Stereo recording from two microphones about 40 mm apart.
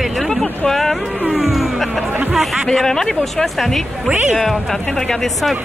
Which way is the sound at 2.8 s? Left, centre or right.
Centre.